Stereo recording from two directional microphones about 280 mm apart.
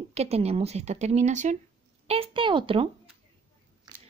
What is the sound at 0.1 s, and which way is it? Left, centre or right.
A woman's voice, right.